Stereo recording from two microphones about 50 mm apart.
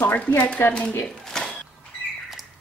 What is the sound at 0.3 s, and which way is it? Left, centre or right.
Speech, left.